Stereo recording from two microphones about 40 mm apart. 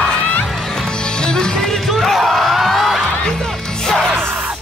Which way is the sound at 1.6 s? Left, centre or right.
Centre.